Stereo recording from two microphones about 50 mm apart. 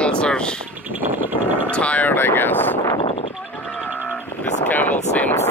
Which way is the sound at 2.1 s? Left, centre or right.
Left.